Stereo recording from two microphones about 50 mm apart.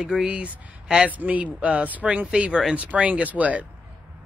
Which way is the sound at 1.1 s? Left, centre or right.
Right.